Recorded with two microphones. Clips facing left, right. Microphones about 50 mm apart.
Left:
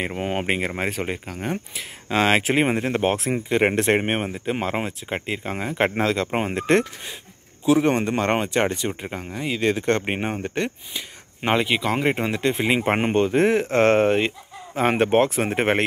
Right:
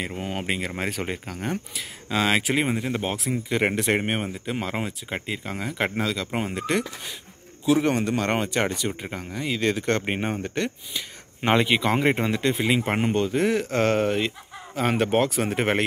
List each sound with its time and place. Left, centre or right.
0.0 s speech: left
0.7 s speech: centre
6.0 s speech: left
6.3 s speech: left
9.0 s speech: centre
11.0 s speech: centre
12.3 s speech: centre